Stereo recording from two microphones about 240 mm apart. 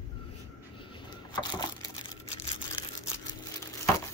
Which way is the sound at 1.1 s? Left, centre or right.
Centre.